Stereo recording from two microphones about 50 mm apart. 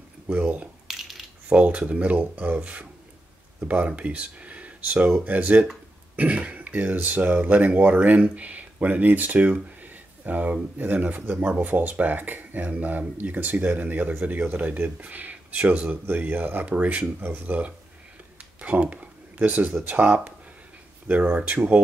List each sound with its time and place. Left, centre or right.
0.3 s speech: right
0.8 s a sound: centre
1.5 s speech: right
16.6 s speech: right
17.2 s speech: right
17.5 s speech: right
21.3 s speech: right